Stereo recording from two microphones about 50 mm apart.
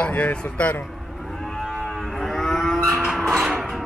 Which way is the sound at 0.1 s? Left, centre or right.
Left.